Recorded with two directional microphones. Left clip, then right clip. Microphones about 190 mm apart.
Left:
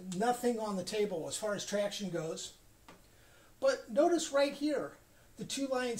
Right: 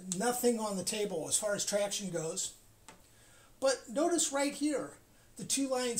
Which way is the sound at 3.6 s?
25° right (ahead or behind).